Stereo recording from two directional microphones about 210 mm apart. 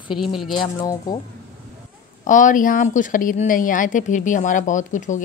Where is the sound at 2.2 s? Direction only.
35° left (ahead or behind).